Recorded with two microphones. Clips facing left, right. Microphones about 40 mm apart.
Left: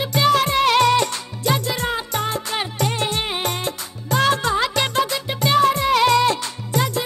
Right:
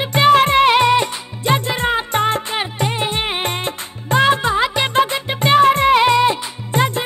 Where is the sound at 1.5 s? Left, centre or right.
Right.